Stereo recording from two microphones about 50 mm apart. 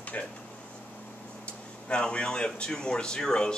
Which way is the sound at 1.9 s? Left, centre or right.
Left.